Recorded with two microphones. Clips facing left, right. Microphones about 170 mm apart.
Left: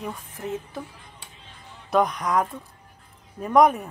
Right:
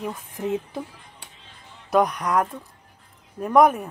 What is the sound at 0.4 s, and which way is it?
Speech, 15° right (ahead or behind).